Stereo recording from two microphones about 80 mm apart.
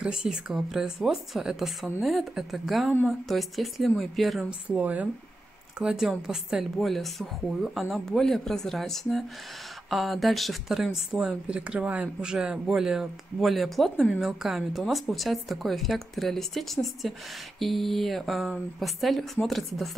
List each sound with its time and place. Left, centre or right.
0.0 s a woman's voice: centre
4.5 s a woman's voice: centre
5.8 s speech: centre